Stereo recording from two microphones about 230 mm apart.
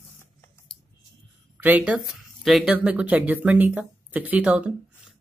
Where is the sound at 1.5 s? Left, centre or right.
Centre.